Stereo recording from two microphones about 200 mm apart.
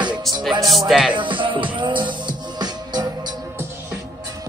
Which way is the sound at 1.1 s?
25° right (ahead or behind).